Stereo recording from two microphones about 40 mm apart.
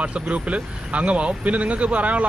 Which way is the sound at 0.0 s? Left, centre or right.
Right.